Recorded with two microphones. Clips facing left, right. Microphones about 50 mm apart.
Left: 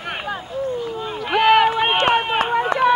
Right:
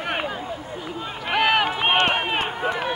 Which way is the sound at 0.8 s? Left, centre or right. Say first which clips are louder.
Left 5 dB; centre.